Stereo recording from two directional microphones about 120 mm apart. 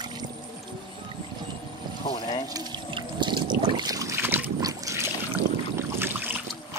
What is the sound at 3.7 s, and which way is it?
Boat, 35° right (ahead or behind).